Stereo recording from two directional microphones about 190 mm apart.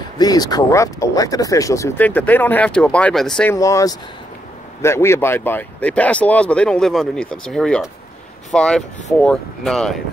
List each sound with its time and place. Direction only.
0.2 s speech: 20° left (ahead or behind); by 3.5 s 5° left (ahead or behind)
3.5 s speech: 15° left (ahead or behind)